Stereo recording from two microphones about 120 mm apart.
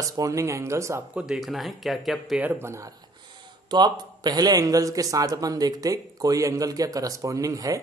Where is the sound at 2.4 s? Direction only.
20° right (ahead or behind).